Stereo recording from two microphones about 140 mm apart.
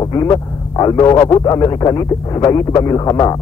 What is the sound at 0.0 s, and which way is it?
Speech, 30° left (ahead or behind).